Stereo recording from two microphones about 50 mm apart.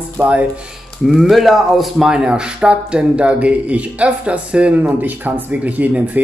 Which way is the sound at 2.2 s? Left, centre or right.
Centre.